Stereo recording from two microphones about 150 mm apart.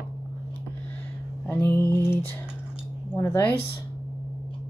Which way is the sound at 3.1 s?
20° left (ahead or behind).